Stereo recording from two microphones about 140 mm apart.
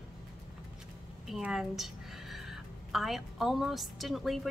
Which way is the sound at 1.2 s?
Centre (ahead or behind).